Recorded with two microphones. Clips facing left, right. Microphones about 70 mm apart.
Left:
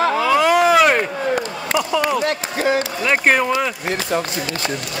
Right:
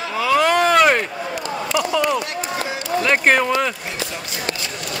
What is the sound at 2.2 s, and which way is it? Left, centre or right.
Speech, left.